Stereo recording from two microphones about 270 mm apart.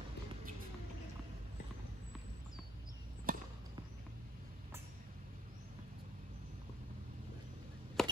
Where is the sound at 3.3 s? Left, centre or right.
Right.